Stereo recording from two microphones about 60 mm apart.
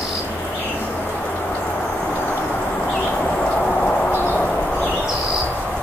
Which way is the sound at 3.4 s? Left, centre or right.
Centre.